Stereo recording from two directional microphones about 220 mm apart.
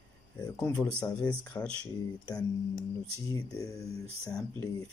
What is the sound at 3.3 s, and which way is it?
Speech, 15° left (ahead or behind).